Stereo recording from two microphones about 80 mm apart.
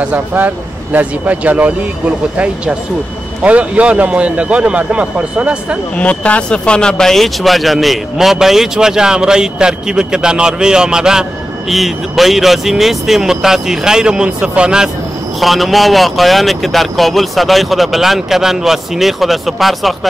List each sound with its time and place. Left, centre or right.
0.0 s speech: centre
5.9 s speech: centre
15.4 s speech: centre